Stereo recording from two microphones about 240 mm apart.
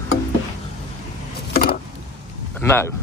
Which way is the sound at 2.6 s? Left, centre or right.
Centre.